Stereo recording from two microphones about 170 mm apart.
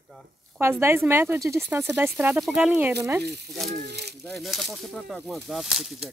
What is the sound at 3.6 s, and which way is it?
Speech, 75° right (ahead or behind).